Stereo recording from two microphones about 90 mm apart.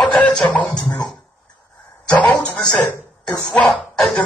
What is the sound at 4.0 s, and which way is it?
Cough, 5° left (ahead or behind).